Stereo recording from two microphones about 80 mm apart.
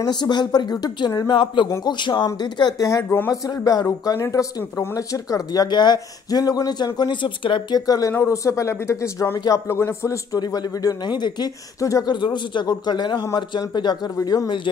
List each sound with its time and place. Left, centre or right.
0.0 s speech: left
1.9 s a man's voice: left
2.8 s speech: left
5.7 s speech: left
7.8 s speech: left
10.4 s speech: left
11.8 s speech: left
12.1 s a man's voice: left
13.4 s a man's voice: left